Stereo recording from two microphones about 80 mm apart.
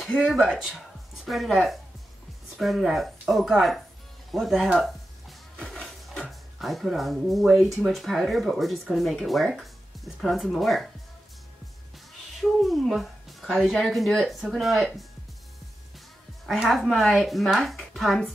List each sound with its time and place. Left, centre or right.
0.2 s speech: centre
5.6 s music: centre
6.1 s speech: centre
12.4 s a woman's voice: centre
16.5 s speech: centre